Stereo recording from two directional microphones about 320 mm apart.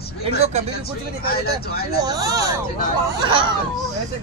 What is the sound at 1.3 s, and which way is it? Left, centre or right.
Speech, left.